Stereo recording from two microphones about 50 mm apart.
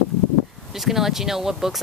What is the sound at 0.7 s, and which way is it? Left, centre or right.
Speech, centre.